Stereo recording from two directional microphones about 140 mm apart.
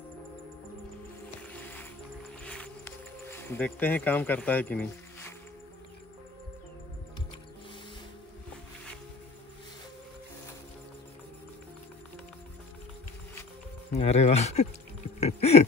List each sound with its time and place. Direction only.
1.5 s music: 15° left (ahead or behind)
2.8 s speech: 15° left (ahead or behind)
13.9 s speech: 50° left (ahead or behind)
15.1 s a sound: 50° left (ahead or behind)